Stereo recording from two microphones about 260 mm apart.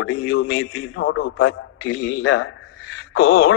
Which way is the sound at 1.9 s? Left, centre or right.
Left.